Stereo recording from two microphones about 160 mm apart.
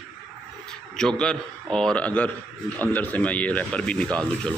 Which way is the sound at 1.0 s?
5° left (ahead or behind).